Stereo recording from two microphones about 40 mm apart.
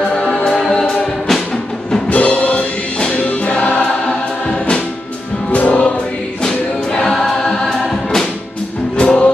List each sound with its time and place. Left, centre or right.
0.1 s choir: centre
0.4 s music: centre
2.0 s music: left
3.8 s choir: left
5.7 s music: left
7.0 s choir: centre
7.7 s music: centre
8.9 s music: left